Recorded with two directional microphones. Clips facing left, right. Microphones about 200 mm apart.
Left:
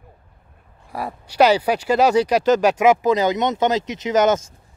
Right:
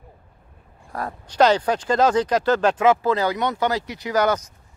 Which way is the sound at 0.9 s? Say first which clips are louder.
Left 2 dB; 10° left (ahead or behind).